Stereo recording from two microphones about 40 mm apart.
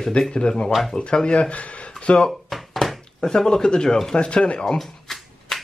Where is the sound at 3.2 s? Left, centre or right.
Centre.